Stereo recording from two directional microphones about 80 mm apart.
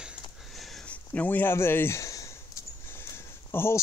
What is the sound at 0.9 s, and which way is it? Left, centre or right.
Speech, left.